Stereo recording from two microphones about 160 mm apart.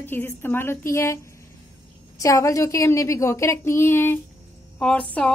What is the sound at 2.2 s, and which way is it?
A woman's voice, 20° left (ahead or behind).